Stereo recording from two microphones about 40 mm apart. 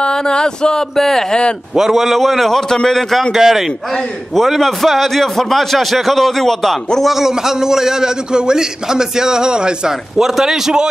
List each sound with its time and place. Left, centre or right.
0.0 s a sound: left
0.9 s a man's voice: centre
1.8 s a man's voice: centre
2.7 s a man's voice: centre
3.3 s a man's voice: centre
4.4 s a man's voice: centre
7.0 s a man's voice: centre